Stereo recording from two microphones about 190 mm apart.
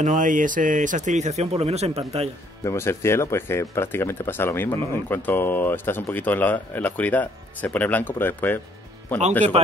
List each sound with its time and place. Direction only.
0.0 s speech: 40° right (ahead or behind)
2.6 s speech: 15° left (ahead or behind)